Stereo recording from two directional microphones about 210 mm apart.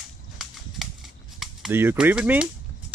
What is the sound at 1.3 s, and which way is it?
Speech, 5° right (ahead or behind).